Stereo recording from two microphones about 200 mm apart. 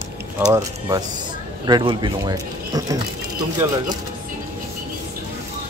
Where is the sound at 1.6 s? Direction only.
20° right (ahead or behind).